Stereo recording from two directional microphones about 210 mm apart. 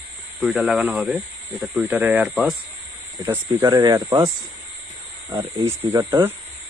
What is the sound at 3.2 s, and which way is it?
Speech, 15° right (ahead or behind).